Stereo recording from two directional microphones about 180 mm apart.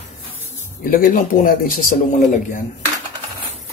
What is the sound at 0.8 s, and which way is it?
A man's voice, 50° left (ahead or behind).